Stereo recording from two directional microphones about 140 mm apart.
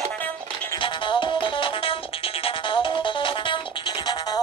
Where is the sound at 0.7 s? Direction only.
35° left (ahead or behind).